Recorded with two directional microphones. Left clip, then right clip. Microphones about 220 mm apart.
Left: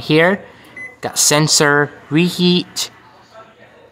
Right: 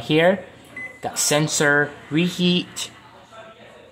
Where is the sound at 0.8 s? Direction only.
60° left (ahead or behind).